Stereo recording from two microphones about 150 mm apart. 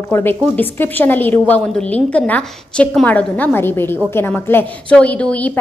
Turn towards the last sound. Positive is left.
turn(degrees=10)  # may be behind; listen again after turning